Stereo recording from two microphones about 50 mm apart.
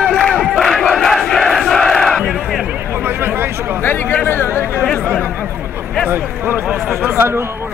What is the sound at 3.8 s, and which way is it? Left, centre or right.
Chatter, left.